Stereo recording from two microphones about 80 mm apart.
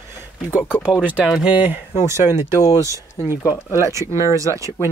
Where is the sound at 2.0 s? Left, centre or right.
Right.